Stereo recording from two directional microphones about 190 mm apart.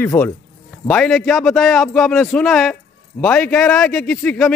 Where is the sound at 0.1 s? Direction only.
10° left (ahead or behind).